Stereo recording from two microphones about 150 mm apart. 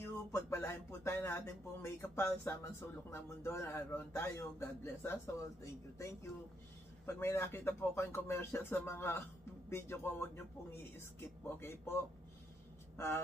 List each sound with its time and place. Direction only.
0.0 s speech: 15° left (ahead or behind)
7.1 s speech: 15° left (ahead or behind)
12.9 s speech: 15° left (ahead or behind)